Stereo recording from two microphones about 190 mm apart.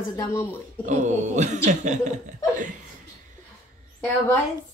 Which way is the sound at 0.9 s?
40° right (ahead or behind).